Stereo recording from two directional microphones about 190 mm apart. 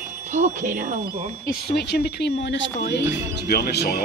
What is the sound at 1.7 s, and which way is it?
Speech, 55° left (ahead or behind).